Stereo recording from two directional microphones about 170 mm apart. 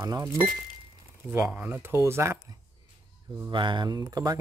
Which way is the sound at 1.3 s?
10° right (ahead or behind).